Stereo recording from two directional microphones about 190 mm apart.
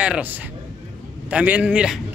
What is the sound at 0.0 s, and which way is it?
A man's voice, 5° right (ahead or behind).